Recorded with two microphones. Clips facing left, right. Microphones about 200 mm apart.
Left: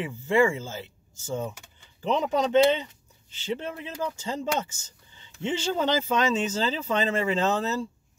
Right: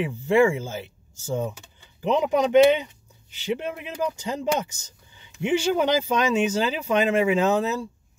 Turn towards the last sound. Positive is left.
turn(degrees=-10)  # may be behind; listen again after turning